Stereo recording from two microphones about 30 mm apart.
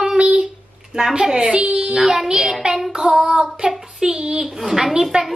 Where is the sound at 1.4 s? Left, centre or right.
Right.